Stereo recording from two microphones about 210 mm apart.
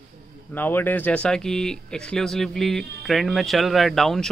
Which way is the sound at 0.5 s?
10° left (ahead or behind).